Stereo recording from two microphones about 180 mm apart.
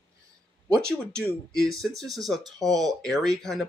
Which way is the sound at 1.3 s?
20° right (ahead or behind).